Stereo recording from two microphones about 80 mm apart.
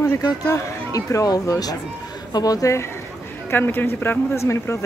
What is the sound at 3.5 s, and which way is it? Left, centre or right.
A man's voice, left.